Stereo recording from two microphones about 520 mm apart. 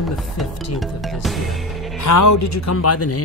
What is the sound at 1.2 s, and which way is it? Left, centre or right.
Music, centre.